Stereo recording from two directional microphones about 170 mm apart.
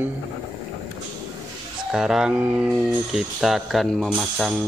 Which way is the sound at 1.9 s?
5° right (ahead or behind).